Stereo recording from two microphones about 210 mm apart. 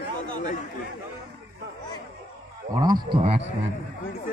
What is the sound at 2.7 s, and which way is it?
Speech, 20° right (ahead or behind).